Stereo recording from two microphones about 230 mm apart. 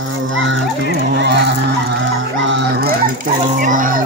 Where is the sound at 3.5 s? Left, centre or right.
Right.